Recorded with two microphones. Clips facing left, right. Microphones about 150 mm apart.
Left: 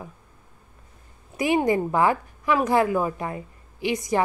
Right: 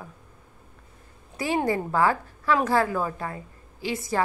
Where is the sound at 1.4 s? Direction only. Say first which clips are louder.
Left 4 dB; 15° left (ahead or behind).